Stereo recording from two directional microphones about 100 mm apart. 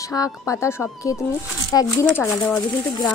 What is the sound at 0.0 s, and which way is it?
A woman's voice, 35° left (ahead or behind).